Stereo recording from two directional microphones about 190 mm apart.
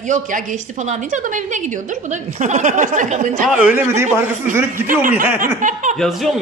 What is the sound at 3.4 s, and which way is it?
A man's voice, 5° right (ahead or behind).